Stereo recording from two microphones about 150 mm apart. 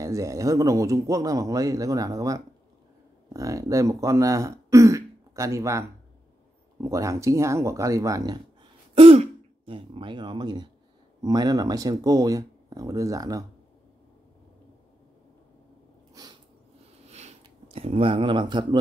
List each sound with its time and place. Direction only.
0.0 s speech: 20° right (ahead or behind)
8.9 s speech: 40° right (ahead or behind); by 13.5 s 25° right (ahead or behind)
17.7 s speech: 40° right (ahead or behind)